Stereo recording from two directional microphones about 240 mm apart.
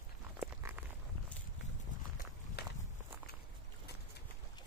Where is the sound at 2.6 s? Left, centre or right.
Left.